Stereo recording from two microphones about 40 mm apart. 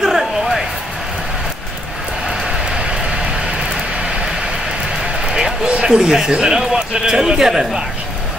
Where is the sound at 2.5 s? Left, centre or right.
Right.